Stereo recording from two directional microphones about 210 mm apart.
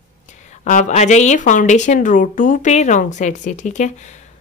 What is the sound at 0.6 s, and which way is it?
A woman's voice, 35° left (ahead or behind).